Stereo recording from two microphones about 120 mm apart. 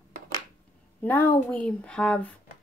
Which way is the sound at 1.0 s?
15° left (ahead or behind).